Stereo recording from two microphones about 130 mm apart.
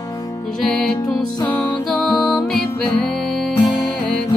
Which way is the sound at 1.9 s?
5° left (ahead or behind).